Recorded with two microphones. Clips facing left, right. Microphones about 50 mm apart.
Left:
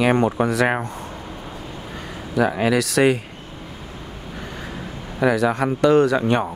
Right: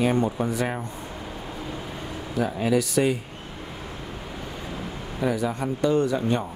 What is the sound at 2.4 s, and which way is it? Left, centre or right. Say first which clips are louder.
Speech: left 5 dB; left.